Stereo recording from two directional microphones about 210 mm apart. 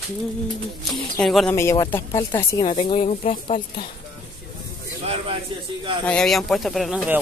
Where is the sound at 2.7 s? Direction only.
25° left (ahead or behind).